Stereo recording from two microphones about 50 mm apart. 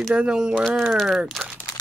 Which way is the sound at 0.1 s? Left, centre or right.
Centre.